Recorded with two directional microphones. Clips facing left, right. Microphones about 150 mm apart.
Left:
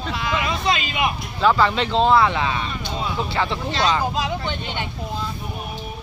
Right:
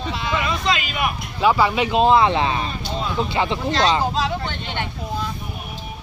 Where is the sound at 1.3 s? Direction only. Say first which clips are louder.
Right 1 dB; 10° right (ahead or behind); by 2.7 s 35° right (ahead or behind).